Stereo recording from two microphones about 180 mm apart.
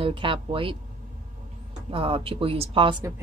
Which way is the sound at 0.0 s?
30° right (ahead or behind).